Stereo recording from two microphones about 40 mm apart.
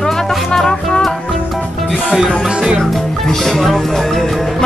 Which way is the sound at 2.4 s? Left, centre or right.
Right.